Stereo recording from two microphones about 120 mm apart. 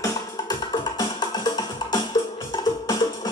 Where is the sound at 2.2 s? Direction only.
35° left (ahead or behind).